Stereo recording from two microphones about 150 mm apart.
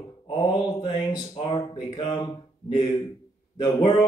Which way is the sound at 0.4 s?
30° left (ahead or behind).